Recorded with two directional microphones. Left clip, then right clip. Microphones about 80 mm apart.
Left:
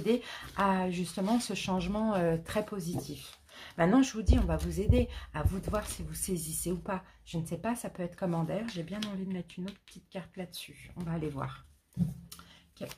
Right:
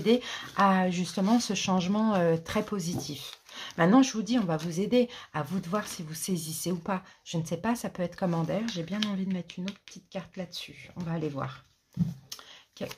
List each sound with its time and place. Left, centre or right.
0.0 s a woman's voice: right
2.7 s speech: right
3.7 s a woman's voice: right
10.1 s speech: centre
12.8 s speech: right